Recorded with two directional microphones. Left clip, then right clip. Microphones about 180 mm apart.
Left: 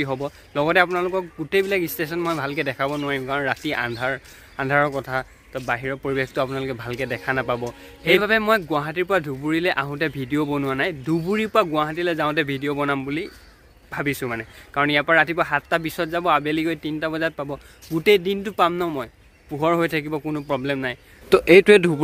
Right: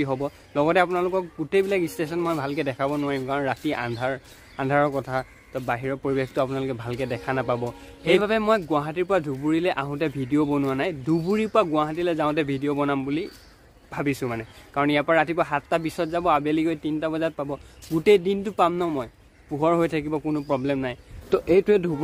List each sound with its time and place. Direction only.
0.0 s speech: 5° right (ahead or behind)